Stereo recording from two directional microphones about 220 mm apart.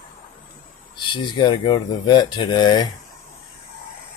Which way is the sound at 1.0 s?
20° left (ahead or behind).